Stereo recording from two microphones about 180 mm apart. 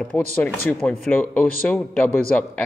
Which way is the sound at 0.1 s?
5° left (ahead or behind).